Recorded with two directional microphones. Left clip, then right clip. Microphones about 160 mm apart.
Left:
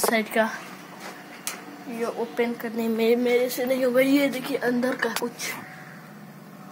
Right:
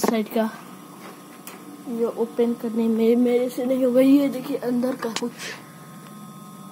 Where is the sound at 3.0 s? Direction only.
40° right (ahead or behind).